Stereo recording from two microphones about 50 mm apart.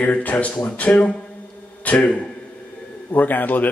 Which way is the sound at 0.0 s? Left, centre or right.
Left.